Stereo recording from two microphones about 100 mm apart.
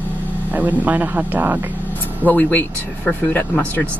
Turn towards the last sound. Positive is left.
turn(degrees=20)  # may be behind; listen again after turning